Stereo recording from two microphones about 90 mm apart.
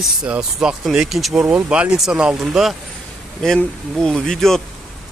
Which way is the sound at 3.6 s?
10° left (ahead or behind).